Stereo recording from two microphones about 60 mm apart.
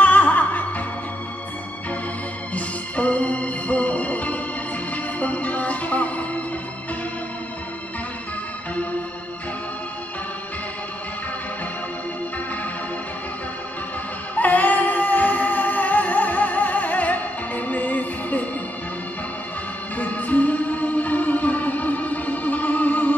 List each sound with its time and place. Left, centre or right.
0.0 s music: left
2.5 s music: left
14.3 s music: left
20.0 s music: left